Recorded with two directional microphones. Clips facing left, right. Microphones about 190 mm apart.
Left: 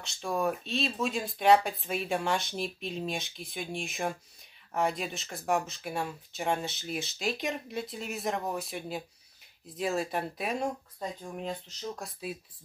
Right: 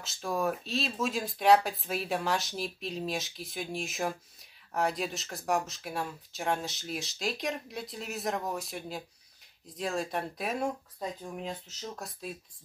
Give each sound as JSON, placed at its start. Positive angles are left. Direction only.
{"t": 0.0, "sound": "speech", "side_deg": 0}